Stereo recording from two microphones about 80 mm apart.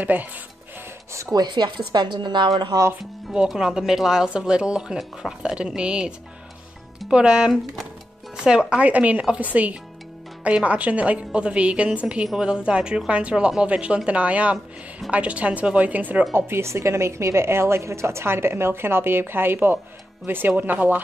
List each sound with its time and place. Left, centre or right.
0.0 s speech: right
1.3 s speech: right
2.7 s speech: right
3.3 s speech: centre
16.3 s a woman's voice: right